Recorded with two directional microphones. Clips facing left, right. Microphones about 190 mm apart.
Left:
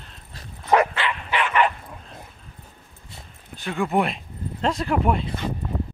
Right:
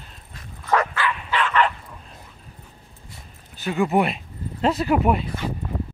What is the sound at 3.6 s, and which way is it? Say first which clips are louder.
Speech: right 2 dB; 5° right (ahead or behind).